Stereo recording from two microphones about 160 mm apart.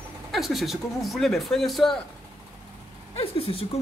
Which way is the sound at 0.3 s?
Centre (ahead or behind).